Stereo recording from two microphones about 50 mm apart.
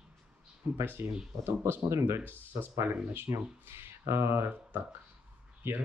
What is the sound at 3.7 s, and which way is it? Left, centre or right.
Speech, right.